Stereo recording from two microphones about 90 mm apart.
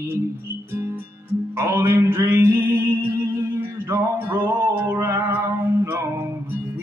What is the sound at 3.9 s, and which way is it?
Music, 30° right (ahead or behind).